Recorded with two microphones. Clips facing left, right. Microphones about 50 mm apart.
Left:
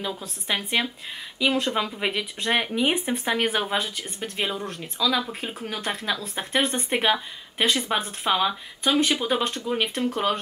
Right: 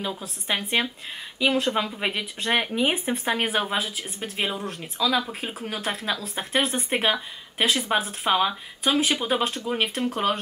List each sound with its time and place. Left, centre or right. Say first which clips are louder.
0.0 s speech: even; centre